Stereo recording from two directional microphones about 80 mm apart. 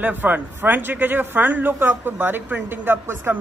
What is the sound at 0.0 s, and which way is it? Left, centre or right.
A man's voice, right.